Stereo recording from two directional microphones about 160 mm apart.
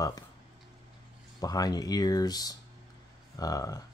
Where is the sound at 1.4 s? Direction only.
25° left (ahead or behind).